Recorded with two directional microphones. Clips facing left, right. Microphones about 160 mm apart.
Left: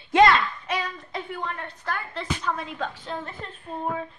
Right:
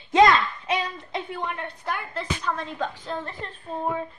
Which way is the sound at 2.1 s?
5° left (ahead or behind).